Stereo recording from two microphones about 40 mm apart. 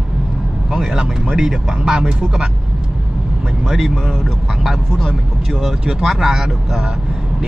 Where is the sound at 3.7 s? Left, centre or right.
Centre.